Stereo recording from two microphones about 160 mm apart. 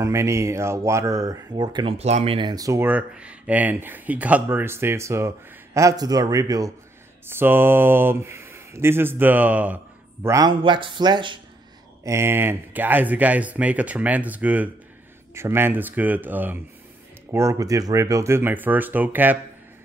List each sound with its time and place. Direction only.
0.0 s speech: 20° right (ahead or behind)
2.0 s speech: 40° right (ahead or behind); by 9.8 s 10° right (ahead or behind)
10.2 s speech: 25° right (ahead or behind)
12.0 s speech: 15° right (ahead or behind)